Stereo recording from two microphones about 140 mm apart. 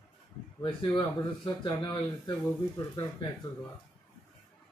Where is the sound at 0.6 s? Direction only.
35° left (ahead or behind).